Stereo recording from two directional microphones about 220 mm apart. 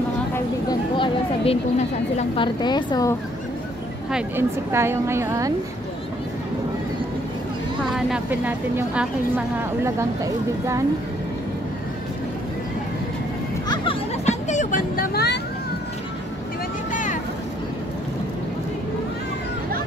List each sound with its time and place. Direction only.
0.7 s a woman's voice: 20° left (ahead or behind)
4.1 s speech: 10° right (ahead or behind)
7.9 s speech: 5° right (ahead or behind)
13.7 s vehicle: 25° left (ahead or behind); by 15.4 s 50° left (ahead or behind)
16.9 s vehicle: 35° left (ahead or behind)